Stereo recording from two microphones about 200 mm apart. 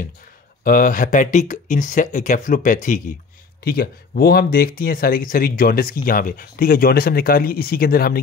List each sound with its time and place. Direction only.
0.7 s speech: 45° left (ahead or behind)